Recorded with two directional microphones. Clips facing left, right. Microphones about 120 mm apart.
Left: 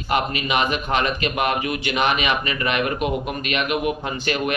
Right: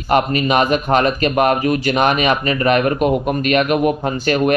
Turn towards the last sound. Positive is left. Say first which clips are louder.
# right 8 dB
turn(degrees=-45)  # may be behind; listen again after turning